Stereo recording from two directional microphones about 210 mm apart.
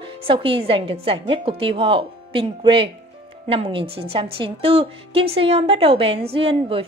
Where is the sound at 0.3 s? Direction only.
25° right (ahead or behind).